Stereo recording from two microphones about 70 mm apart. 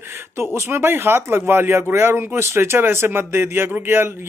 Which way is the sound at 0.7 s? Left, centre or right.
Right.